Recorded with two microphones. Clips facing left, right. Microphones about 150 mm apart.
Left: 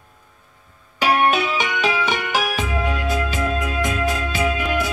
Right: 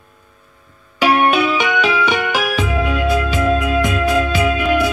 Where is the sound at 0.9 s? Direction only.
40° left (ahead or behind).